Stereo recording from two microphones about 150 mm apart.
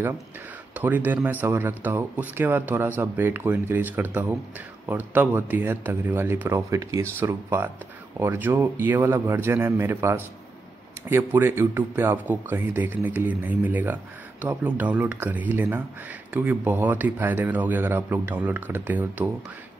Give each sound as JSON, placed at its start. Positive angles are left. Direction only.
{"t": 0.7, "sound": "speech", "side_deg": -10}